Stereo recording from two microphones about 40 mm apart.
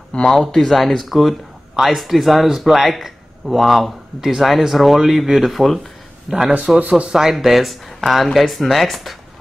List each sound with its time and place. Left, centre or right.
0.1 s speech: centre
0.5 s speech: centre
6.3 s a man's voice: centre
6.8 s speech: right
7.2 s speech: centre